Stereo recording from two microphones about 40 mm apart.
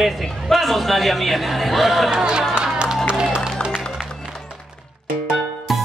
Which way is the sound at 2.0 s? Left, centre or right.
Centre.